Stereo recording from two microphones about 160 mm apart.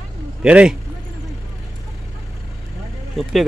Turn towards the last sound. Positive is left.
turn(degrees=0)  # may be behind; listen again after turning